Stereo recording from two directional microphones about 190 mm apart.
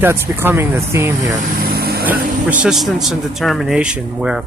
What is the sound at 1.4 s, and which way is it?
Vehicle, 50° right (ahead or behind).